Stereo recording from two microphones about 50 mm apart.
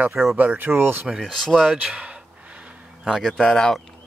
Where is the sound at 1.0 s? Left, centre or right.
Centre.